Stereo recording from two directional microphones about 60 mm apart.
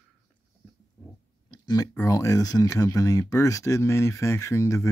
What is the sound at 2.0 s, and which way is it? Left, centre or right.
Speech, left.